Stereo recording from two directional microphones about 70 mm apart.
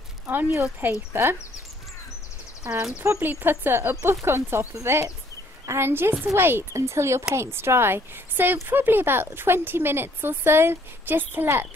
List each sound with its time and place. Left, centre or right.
0.5 s speech: right
2.6 s speech: right
3.9 s speech: right